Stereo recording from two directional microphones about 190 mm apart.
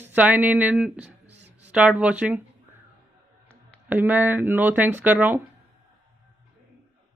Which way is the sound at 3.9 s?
10° right (ahead or behind).